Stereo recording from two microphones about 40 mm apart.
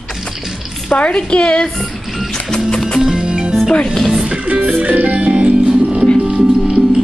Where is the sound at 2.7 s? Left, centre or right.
Centre.